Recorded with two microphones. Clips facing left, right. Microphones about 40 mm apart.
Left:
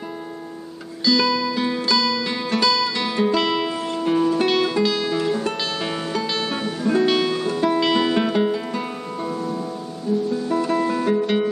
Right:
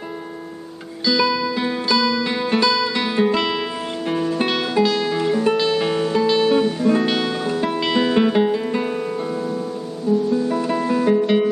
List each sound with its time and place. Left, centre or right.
1.0 s music: centre
3.3 s music: centre